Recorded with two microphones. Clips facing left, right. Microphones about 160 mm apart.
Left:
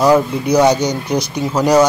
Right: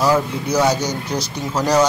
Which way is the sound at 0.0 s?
15° left (ahead or behind).